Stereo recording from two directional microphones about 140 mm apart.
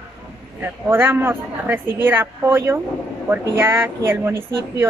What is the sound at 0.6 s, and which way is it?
Speech, 15° right (ahead or behind).